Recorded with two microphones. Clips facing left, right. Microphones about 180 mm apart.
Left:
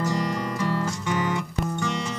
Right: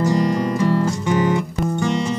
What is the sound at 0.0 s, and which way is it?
Music, 30° right (ahead or behind).